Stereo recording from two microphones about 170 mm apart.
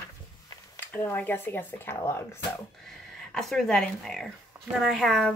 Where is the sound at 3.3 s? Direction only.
Centre (ahead or behind).